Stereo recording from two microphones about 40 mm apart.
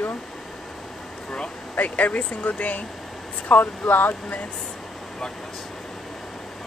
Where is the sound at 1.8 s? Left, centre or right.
Left.